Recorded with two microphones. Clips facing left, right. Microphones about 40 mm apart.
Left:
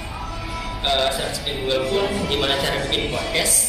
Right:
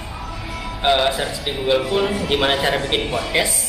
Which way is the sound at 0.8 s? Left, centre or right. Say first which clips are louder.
Right 4 dB; centre.